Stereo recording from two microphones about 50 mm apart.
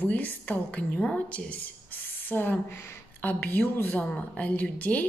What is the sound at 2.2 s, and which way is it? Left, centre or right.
A woman's voice, left.